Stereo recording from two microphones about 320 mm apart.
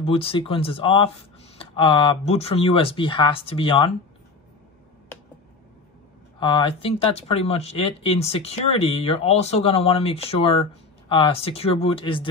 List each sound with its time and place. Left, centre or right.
0.0 s speech: centre
6.4 s speech: centre